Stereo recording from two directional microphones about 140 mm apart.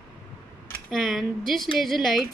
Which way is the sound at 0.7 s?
5° left (ahead or behind).